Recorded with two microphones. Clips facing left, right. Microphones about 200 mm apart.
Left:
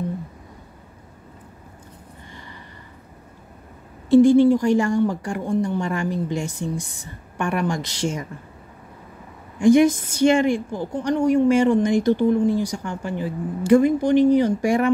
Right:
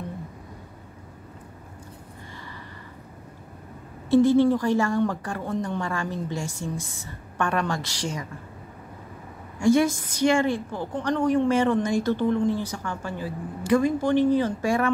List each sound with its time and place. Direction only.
4.1 s a woman's voice: 15° left (ahead or behind)
9.6 s a woman's voice: 20° left (ahead or behind)